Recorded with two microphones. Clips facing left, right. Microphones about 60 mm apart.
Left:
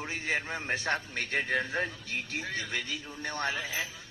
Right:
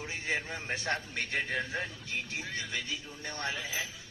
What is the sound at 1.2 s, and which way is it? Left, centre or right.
A man's voice, left.